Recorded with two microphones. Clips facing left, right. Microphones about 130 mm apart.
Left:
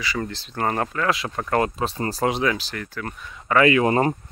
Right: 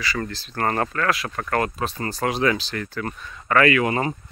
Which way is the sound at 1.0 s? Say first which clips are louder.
Even; 20° left (ahead or behind).